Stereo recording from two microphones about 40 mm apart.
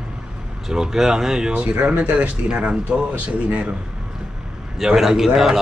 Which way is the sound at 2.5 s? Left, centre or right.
Right.